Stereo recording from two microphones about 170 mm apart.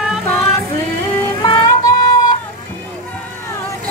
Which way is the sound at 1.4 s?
25° left (ahead or behind).